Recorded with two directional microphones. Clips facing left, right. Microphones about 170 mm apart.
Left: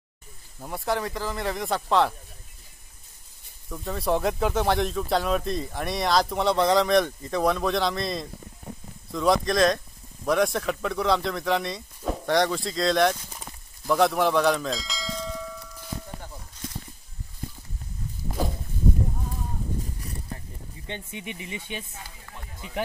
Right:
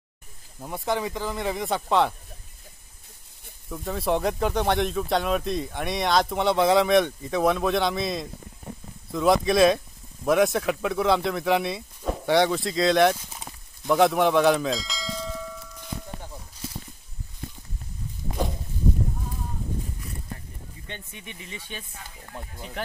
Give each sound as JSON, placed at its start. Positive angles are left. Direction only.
{"t": 0.6, "sound": "speech", "side_deg": 0}
{"t": 3.7, "sound": "speech", "side_deg": 0}
{"t": 13.8, "sound": "bell", "side_deg": 0}
{"t": 20.8, "sound": "speech", "side_deg": 20}